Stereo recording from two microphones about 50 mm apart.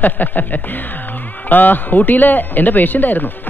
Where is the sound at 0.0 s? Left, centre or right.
Left.